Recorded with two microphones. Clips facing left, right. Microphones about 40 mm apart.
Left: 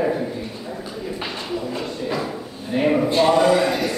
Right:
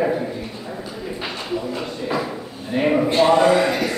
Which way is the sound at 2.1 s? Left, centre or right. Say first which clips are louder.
Right 1 dB; centre.